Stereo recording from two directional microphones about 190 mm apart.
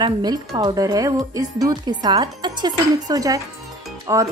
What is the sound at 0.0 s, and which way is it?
A woman's voice, 20° right (ahead or behind).